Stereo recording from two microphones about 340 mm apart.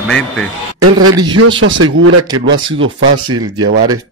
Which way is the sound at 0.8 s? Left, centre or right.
Right.